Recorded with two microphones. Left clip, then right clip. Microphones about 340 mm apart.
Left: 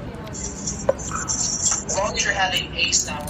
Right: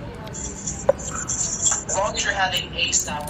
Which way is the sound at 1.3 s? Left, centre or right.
Centre.